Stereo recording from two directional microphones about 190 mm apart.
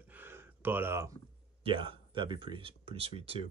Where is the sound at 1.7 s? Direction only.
25° right (ahead or behind).